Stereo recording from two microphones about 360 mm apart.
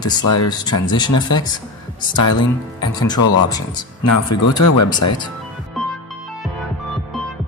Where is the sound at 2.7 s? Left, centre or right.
Centre.